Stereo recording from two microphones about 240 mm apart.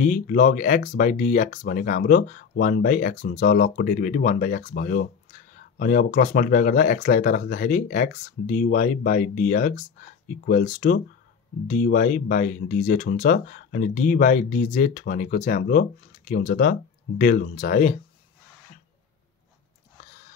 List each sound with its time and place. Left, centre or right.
0.0 s speech: left